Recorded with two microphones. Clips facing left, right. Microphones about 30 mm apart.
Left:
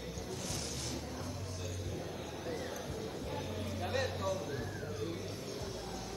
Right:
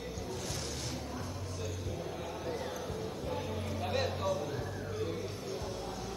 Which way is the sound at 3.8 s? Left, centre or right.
Centre.